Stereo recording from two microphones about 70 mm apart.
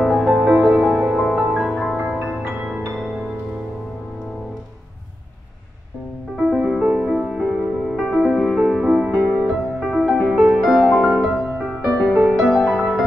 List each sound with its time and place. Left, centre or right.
0.0 s music: centre
2.0 s music: centre
2.6 s music: right
6.3 s music: centre
10.1 s music: centre